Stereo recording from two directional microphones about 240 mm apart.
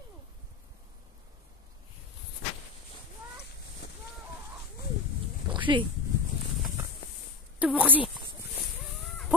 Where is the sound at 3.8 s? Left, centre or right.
Left.